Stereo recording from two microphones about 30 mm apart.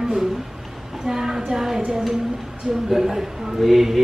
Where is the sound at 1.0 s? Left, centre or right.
Centre.